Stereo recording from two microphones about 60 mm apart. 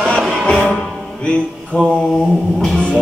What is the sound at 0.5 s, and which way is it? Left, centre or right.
Music, centre.